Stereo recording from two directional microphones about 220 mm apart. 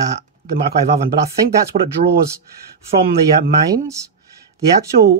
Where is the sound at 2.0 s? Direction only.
35° right (ahead or behind).